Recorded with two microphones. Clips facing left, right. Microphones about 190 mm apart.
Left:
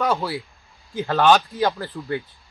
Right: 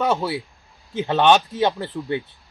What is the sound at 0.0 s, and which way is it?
Speech, 25° right (ahead or behind).